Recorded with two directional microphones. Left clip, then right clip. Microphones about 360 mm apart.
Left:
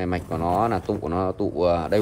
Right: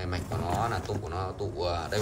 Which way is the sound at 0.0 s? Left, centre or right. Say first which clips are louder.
Left 9 dB; centre.